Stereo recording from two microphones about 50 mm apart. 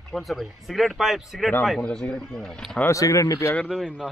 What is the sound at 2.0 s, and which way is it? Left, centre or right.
Speech, centre.